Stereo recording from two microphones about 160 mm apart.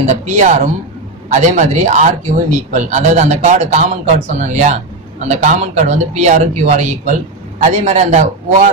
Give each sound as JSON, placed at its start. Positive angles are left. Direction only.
{"t": 0.0, "sound": "a man's voice", "side_deg": -45}